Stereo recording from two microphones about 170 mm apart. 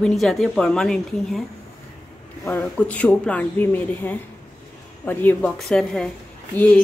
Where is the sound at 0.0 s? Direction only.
Centre (ahead or behind).